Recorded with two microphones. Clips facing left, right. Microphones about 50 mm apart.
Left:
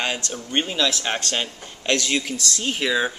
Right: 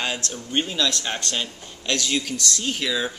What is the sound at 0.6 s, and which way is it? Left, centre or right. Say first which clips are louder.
A man's voice: left 1 dB; centre.